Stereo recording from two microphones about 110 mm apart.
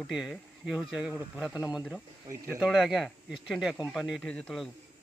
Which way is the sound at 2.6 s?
Centre (ahead or behind).